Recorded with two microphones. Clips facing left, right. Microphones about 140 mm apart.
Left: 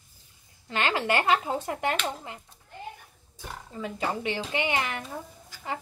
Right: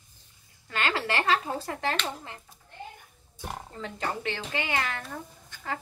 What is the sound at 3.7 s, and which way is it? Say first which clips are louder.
A woman's voice: left 4 dB; 10° left (ahead or behind).